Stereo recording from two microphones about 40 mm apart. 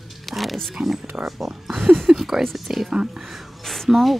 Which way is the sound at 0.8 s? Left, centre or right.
Centre.